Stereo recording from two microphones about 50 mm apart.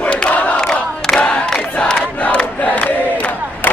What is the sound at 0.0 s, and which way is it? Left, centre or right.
Crowd, left.